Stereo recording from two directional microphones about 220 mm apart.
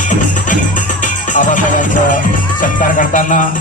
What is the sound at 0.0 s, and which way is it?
Music, 35° left (ahead or behind).